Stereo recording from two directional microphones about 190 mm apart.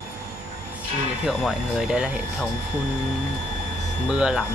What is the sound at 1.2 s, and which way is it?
Speech, centre (ahead or behind).